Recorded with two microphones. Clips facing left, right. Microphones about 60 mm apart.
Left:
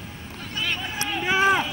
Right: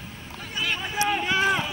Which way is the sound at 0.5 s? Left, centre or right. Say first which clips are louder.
Even; centre.